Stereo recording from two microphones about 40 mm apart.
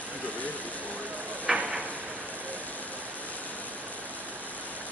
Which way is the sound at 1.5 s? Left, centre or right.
Centre.